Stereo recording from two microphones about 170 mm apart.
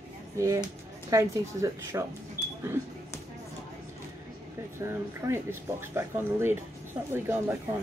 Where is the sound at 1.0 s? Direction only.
20° right (ahead or behind).